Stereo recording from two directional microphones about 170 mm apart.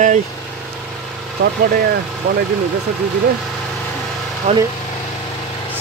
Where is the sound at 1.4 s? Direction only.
65° right (ahead or behind).